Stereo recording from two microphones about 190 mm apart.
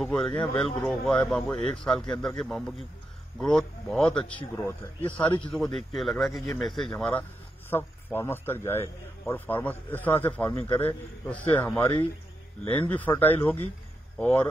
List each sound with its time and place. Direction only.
0.0 s speech: 5° left (ahead or behind)
0.3 s speech: 25° left (ahead or behind)
0.7 s a man's voice: centre (ahead or behind)